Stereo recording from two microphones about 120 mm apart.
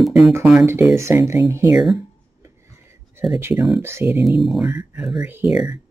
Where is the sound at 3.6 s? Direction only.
Centre (ahead or behind).